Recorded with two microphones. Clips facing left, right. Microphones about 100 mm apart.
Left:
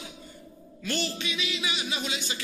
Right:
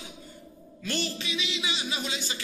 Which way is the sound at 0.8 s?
40° right (ahead or behind).